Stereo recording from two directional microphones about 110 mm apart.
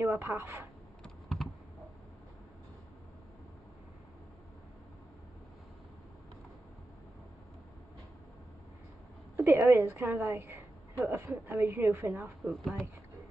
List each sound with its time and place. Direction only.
0.0 s a woman's voice: 20° right (ahead or behind)
1.0 s computer keyboard: 5° left (ahead or behind)
9.4 s a woman's voice: 20° right (ahead or behind)
12.4 s speech: 5° right (ahead or behind)